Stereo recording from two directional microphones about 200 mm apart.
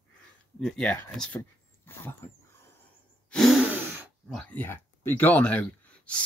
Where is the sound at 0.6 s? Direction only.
5° left (ahead or behind).